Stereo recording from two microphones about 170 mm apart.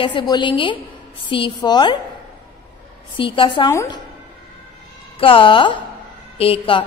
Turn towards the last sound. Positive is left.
turn(degrees=30)  # may be behind; listen again after turning